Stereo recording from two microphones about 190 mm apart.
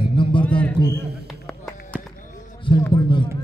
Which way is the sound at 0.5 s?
5° left (ahead or behind).